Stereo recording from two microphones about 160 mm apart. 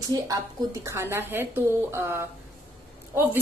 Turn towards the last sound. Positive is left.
turn(degrees=-15)  # may be behind; listen again after turning